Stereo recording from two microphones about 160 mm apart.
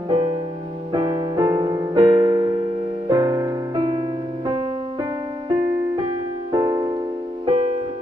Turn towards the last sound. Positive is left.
turn(degrees=-30)  # may be behind; listen again after turning